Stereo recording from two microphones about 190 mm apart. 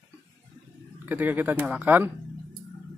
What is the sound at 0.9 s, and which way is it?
Speech, 10° right (ahead or behind).